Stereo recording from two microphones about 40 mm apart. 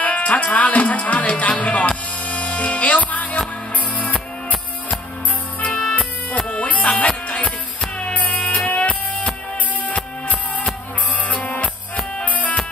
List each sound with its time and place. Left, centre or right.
0.0 s speech: left
1.4 s music: left
5.7 s music: centre
5.9 s music: left